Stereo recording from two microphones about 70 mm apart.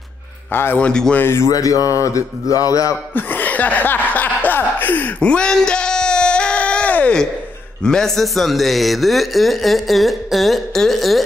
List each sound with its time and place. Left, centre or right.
0.5 s a man's voice: left
0.7 s a man's voice: centre
1.1 s speech: left
1.5 s speech: left
3.2 s speech: left
5.2 s a sound: centre
7.8 s speech: centre